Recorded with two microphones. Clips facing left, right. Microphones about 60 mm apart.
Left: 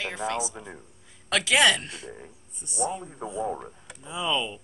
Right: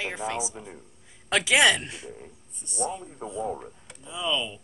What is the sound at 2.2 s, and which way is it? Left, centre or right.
Speech, centre.